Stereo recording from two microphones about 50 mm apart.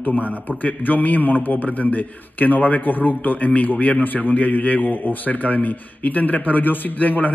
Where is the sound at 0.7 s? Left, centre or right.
Left.